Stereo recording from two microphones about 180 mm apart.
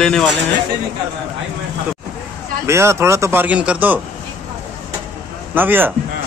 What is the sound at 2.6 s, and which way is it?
Speech, 15° right (ahead or behind).